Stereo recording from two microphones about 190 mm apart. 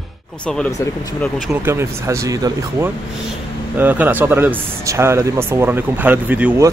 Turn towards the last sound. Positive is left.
turn(degrees=-10)  # may be behind; listen again after turning